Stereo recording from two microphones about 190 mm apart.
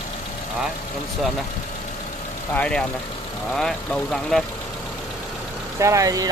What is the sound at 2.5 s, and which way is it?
Speech, 5° left (ahead or behind).